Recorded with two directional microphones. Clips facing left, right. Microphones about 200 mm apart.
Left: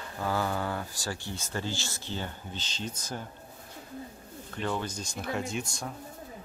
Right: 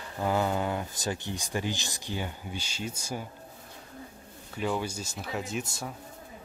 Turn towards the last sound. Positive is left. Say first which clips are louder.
# even
turn(degrees=-5)  # may be behind; listen again after turning